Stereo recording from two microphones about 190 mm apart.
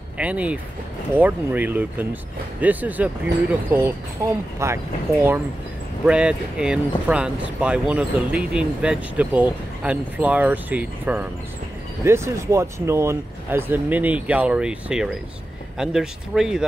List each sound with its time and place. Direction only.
0.2 s speech: 5° right (ahead or behind)
6.0 s speech: 5° right (ahead or behind)